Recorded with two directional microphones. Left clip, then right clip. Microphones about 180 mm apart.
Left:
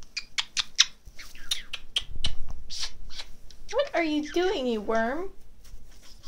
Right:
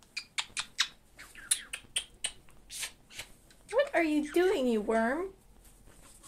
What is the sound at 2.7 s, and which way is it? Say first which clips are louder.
Shuffling cards: left 5 dB; 15° right (ahead or behind).